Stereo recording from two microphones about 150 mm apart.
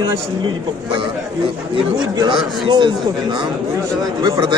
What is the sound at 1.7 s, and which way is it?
Speech, 30° right (ahead or behind).